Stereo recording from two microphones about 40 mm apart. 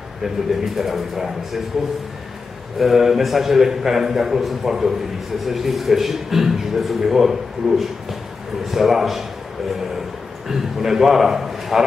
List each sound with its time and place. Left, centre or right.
0.2 s a man's voice: centre
2.8 s a man's voice: centre
10.5 s a man's voice: centre